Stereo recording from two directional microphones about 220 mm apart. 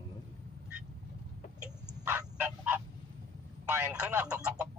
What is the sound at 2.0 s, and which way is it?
Fowl, 10° right (ahead or behind).